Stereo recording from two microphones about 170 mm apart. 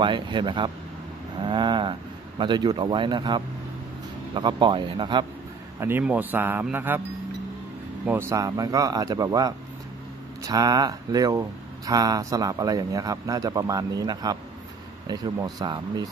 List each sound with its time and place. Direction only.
0.0 s speech: 25° right (ahead or behind)
1.4 s a sound: 25° right (ahead or behind)
4.3 s speech: 25° right (ahead or behind)
5.8 s speech: 10° right (ahead or behind)
8.1 s speech: 15° right (ahead or behind)